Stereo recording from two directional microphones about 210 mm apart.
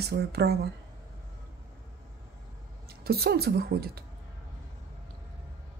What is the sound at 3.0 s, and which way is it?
Speech, 50° right (ahead or behind).